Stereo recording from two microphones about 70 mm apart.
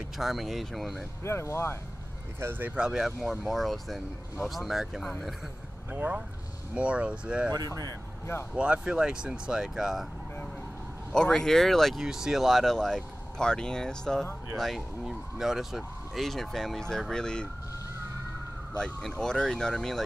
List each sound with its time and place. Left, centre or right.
0.2 s speech: centre
1.2 s speech: left
2.6 s speech: centre
3.2 s speech: centre
5.9 s speech: right
7.5 s speech: right
8.5 s speech: centre
11.1 s speech: centre
14.6 s speech: centre
18.8 s speech: centre